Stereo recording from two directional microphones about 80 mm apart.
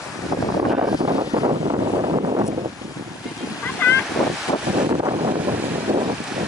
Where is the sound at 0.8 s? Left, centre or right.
Right.